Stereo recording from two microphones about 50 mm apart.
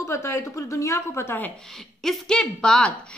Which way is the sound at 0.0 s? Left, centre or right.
Left.